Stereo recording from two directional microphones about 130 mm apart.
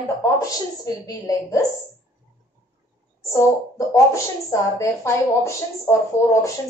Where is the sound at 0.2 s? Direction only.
25° left (ahead or behind).